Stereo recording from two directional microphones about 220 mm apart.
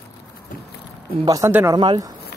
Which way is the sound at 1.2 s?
15° right (ahead or behind).